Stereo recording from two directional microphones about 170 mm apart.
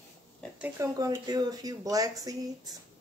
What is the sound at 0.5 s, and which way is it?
Speech, 10° right (ahead or behind).